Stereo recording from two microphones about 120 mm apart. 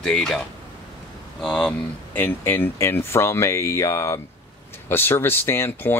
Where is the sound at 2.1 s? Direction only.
15° left (ahead or behind).